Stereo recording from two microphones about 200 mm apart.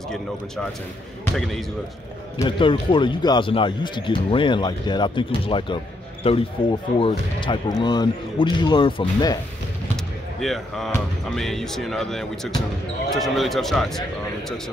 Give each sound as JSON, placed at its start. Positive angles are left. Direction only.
{"t": 1.3, "sound": "speech", "side_deg": 0}
{"t": 2.4, "sound": "speech", "side_deg": 25}
{"t": 10.4, "sound": "speech", "side_deg": 0}